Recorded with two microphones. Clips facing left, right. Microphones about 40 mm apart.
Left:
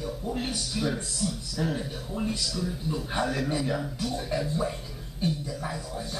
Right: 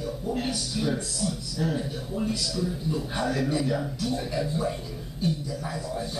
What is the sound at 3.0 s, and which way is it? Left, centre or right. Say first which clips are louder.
A man's voice: even; centre.